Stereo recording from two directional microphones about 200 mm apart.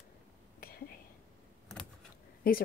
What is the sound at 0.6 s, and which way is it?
Whispering, 50° left (ahead or behind).